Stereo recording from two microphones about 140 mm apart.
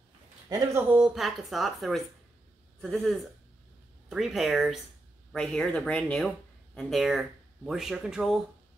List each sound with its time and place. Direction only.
0.9 s speech: 5° right (ahead or behind)